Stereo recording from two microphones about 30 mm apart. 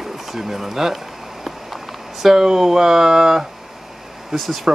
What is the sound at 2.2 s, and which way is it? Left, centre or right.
Speech, centre.